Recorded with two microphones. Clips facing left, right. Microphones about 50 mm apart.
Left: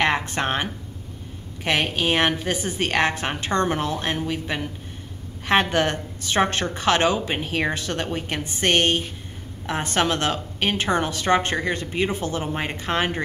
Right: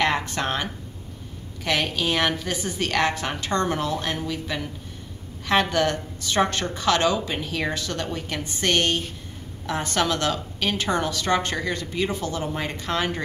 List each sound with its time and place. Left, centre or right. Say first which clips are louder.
0.0 s a woman's voice: left 1 dB; left